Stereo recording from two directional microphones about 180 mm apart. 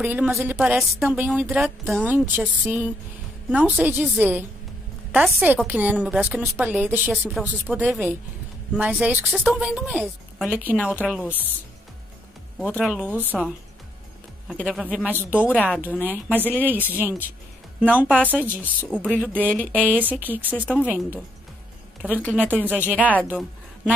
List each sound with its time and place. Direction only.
0.0 s a woman's voice: 10° right (ahead or behind)
12.5 s a woman's voice: 5° right (ahead or behind)
14.5 s speech: centre (ahead or behind)
15.4 s a woman's voice: 10° left (ahead or behind)
16.1 s a woman's voice: 10° right (ahead or behind)
16.4 s a woman's voice: 10° left (ahead or behind)
16.7 s a woman's voice: 10° right (ahead or behind)
18.0 s a woman's voice: 10° left (ahead or behind)
18.3 s a woman's voice: 10° right (ahead or behind)
19.1 s a woman's voice: 10° left (ahead or behind)
19.7 s a woman's voice: 10° right (ahead or behind)